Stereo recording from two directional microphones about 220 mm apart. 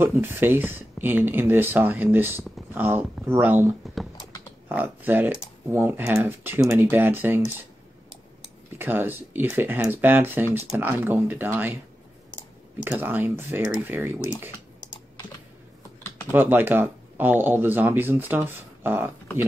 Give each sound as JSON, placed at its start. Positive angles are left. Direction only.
{"t": 0.0, "sound": "speech", "side_deg": -10}
{"t": 3.8, "sound": "computer keyboard", "side_deg": 0}
{"t": 4.6, "sound": "speech", "side_deg": -10}
{"t": 8.7, "sound": "speech", "side_deg": -10}
{"t": 12.8, "sound": "speech", "side_deg": -10}
{"t": 16.3, "sound": "speech", "side_deg": -10}